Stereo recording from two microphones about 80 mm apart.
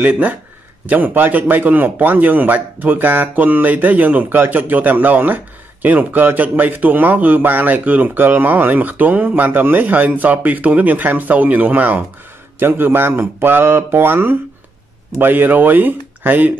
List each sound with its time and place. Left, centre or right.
0.0 s speech: right